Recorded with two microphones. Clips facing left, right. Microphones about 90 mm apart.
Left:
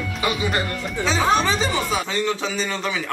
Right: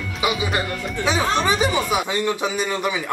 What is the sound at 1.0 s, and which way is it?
Music, 5° left (ahead or behind).